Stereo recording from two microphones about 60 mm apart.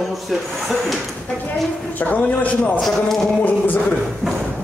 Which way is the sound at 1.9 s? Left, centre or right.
Left.